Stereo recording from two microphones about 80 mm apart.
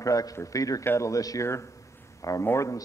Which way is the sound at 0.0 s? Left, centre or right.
Left.